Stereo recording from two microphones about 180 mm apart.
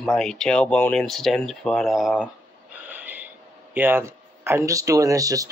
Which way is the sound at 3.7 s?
10° right (ahead or behind).